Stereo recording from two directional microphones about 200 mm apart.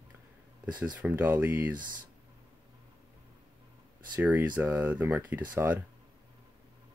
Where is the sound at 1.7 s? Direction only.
45° right (ahead or behind).